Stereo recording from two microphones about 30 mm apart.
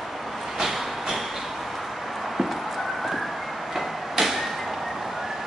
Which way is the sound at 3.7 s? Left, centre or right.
Centre.